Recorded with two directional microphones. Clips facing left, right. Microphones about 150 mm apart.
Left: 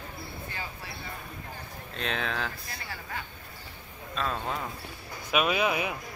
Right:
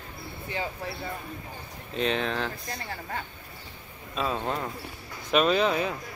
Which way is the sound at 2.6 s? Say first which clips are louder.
Right 5 dB; 40° right (ahead or behind).